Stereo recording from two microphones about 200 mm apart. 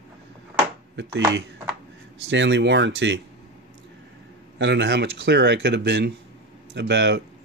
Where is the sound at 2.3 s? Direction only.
60° right (ahead or behind).